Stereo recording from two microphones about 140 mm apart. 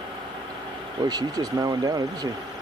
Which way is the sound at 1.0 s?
30° right (ahead or behind).